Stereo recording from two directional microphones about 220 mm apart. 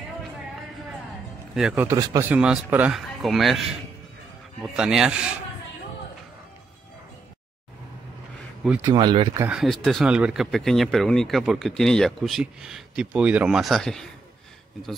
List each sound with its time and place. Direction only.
1.5 s a man's voice: centre (ahead or behind)
1.9 s speech: 15° right (ahead or behind)
4.7 s speech: 5° right (ahead or behind)
8.8 s speech: 20° right (ahead or behind)
9.4 s speech: 5° right (ahead or behind)